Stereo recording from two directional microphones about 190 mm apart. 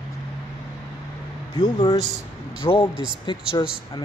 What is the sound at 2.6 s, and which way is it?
A man's voice, 25° left (ahead or behind).